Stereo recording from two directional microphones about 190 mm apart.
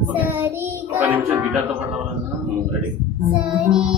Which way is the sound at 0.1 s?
10° right (ahead or behind).